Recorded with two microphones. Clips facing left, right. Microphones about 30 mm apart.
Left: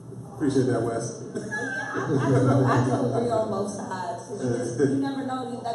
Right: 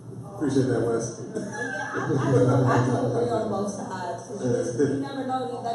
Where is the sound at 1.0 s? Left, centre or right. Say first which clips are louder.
Right 1 dB; left.